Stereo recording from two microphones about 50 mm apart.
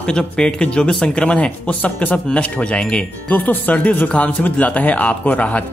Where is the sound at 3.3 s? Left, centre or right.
Left.